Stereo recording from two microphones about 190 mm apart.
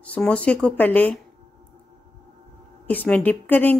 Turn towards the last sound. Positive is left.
turn(degrees=10)  # may be behind; listen again after turning